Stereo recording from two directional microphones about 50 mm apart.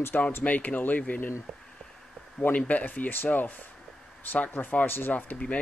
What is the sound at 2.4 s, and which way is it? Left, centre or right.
Speech, left.